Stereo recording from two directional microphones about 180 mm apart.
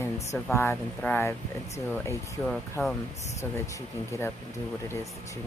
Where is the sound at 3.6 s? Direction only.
15° left (ahead or behind).